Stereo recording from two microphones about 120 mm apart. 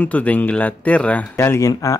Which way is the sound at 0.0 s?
10° left (ahead or behind).